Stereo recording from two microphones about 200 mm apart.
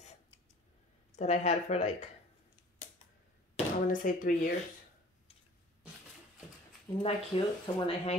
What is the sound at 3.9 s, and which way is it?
Speech, 40° left (ahead or behind).